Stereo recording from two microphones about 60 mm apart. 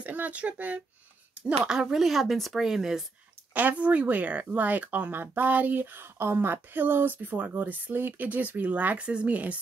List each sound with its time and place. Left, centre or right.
0.0 s speech: right
1.6 s speech: centre
3.5 s speech: right